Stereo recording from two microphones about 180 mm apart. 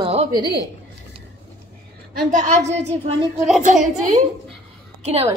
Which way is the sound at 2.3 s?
45° right (ahead or behind).